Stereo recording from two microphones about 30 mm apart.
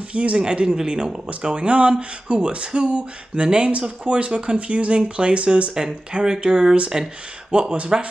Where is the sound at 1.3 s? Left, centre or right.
Right.